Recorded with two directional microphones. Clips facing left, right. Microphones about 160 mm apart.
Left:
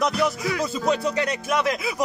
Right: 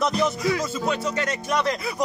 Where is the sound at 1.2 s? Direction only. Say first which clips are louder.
Left 1 dB; 10° left (ahead or behind).